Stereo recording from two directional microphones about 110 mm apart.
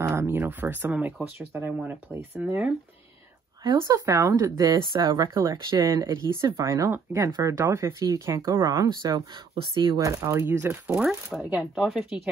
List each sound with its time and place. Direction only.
0.0 s speech: 20° right (ahead or behind)
3.7 s speech: 30° right (ahead or behind)
6.3 s speech: 25° right (ahead or behind); by 10.0 s 45° right (ahead or behind)
10.0 s speech: 30° right (ahead or behind)
11.3 s speech: 5° right (ahead or behind)